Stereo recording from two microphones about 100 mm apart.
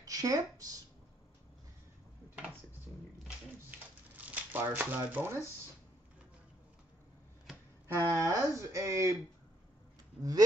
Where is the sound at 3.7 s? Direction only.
15° right (ahead or behind).